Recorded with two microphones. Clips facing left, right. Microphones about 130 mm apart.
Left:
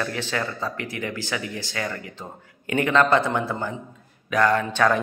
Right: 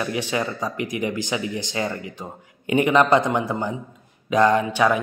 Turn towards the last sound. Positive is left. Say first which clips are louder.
# right 2 dB
turn(degrees=-10)  # may be behind; listen again after turning